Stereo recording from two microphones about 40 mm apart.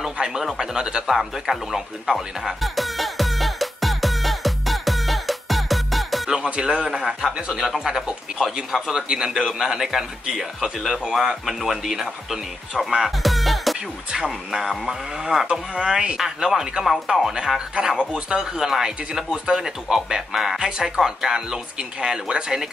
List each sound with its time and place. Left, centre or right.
0.0 s a sound: centre
0.6 s speech: centre
1.0 s music: centre
6.3 s speech: right
7.0 s speech: centre
10.8 s speech: centre
14.1 s speech: centre